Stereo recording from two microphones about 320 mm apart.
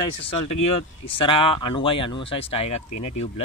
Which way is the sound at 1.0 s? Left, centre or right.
Centre.